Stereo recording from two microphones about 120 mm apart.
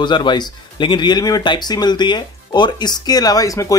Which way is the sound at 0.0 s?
40° left (ahead or behind).